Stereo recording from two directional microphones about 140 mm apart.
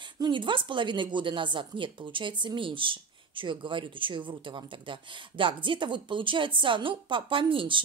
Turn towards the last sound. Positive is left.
turn(degrees=-40)  # may be behind; listen again after turning